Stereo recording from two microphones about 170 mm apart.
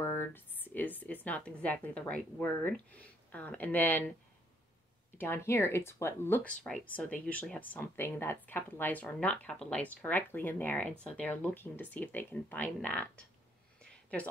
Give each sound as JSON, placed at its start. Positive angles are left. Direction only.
{"t": 0.0, "sound": "speech", "side_deg": 15}
{"t": 5.1, "sound": "a woman's voice", "side_deg": 15}